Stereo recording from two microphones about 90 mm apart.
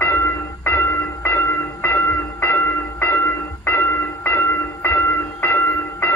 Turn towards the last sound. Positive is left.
turn(degrees=20)  # may be behind; listen again after turning